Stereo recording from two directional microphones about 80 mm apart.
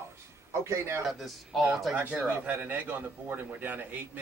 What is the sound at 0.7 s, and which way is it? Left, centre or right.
Speech, right.